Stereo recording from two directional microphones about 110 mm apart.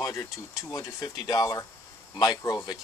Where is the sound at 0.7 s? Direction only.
35° left (ahead or behind).